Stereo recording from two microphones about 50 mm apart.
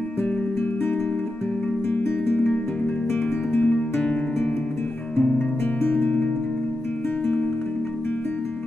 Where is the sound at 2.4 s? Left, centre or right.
Centre.